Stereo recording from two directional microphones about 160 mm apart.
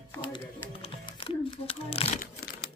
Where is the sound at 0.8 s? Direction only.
35° left (ahead or behind).